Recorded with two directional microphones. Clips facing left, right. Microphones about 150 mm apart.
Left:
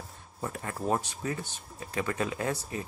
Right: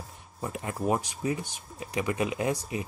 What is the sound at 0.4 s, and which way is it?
Speech, 15° right (ahead or behind).